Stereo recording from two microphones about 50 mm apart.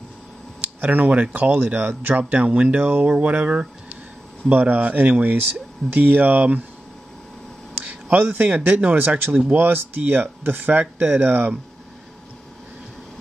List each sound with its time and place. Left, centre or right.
0.7 s speech: right
7.8 s a sound: right
8.5 s speech: right